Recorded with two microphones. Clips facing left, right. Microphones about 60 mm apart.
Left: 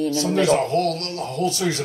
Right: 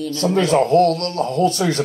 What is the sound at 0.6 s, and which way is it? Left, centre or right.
Speech, right.